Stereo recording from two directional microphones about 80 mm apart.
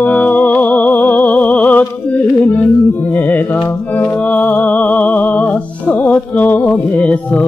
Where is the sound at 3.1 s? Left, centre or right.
Left.